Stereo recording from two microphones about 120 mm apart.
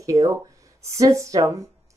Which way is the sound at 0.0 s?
25° right (ahead or behind).